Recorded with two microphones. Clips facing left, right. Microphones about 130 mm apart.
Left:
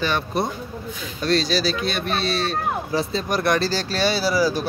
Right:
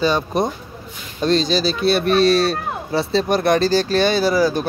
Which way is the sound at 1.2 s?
25° right (ahead or behind).